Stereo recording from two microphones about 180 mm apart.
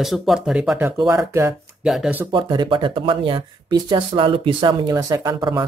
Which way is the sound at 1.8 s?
5° right (ahead or behind).